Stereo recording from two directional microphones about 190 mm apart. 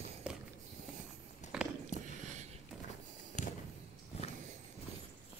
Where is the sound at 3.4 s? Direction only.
40° left (ahead or behind).